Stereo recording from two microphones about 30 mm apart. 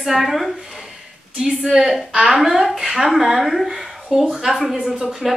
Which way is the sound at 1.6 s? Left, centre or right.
Centre.